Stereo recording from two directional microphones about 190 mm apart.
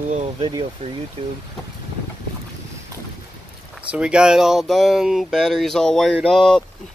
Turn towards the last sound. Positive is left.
turn(degrees=0)  # may be behind; listen again after turning